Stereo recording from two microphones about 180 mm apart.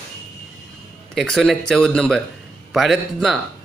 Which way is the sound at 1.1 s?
Centre (ahead or behind).